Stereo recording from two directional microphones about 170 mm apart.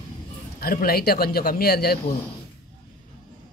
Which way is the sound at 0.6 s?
60° left (ahead or behind).